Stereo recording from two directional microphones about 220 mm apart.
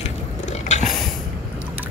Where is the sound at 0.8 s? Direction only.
Centre (ahead or behind).